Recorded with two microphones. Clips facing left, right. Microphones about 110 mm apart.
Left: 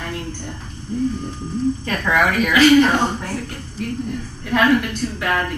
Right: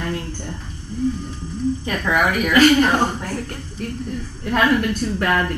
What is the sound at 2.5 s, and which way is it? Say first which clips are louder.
Speech: left 1 dB; 45° right (ahead or behind).